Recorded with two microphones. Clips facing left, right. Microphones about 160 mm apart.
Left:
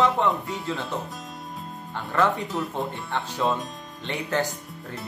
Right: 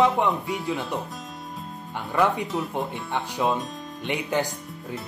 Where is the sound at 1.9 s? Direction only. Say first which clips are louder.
Right 1 dB; 15° right (ahead or behind).